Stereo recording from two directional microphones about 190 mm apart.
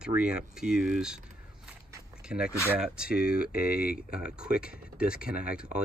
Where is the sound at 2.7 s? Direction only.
5° right (ahead or behind).